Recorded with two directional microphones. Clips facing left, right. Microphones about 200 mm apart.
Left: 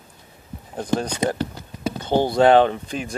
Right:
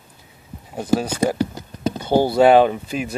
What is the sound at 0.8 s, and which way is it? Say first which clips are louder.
Speech: right 3 dB; 5° right (ahead or behind).